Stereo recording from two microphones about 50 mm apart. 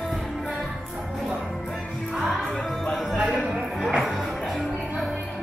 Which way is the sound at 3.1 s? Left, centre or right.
Centre.